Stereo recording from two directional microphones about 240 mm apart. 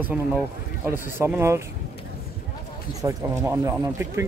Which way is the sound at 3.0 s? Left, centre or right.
Centre.